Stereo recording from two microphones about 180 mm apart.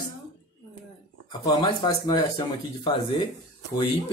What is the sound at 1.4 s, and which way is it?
Speech, 20° left (ahead or behind).